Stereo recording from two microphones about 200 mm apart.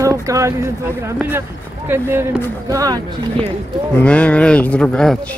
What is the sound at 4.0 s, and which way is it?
Speech, 5° left (ahead or behind).